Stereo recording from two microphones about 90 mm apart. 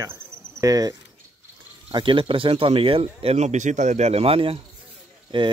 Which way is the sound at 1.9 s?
65° right (ahead or behind).